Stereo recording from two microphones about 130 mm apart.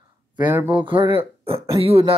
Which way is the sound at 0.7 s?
40° right (ahead or behind).